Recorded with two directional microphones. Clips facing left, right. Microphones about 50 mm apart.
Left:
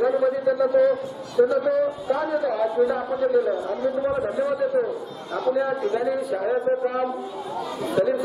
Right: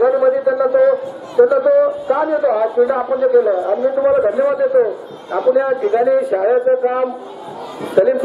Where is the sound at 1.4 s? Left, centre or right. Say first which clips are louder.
Right 8 dB; right.